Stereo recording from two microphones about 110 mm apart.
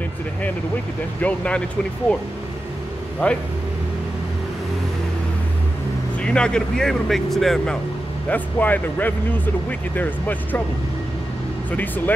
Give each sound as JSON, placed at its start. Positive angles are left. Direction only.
{"t": 1.2, "sound": "speech", "side_deg": 10}
{"t": 3.2, "sound": "speech", "side_deg": 10}
{"t": 6.1, "sound": "speech", "side_deg": 10}
{"t": 8.3, "sound": "speech", "side_deg": 15}
{"t": 11.7, "sound": "speech", "side_deg": 15}